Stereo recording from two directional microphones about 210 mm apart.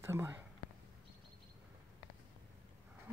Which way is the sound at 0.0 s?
10° right (ahead or behind).